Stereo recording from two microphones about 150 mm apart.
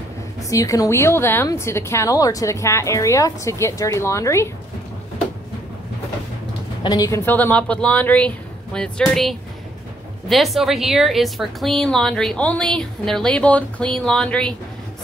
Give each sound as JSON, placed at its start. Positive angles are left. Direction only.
{"t": 0.4, "sound": "a woman's voice", "side_deg": 20}
{"t": 6.8, "sound": "a woman's voice", "side_deg": 25}